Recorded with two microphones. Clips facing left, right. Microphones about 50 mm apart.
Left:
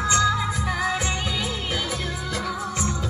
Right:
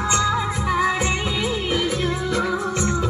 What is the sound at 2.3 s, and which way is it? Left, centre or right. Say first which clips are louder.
Music: right 6 dB; right.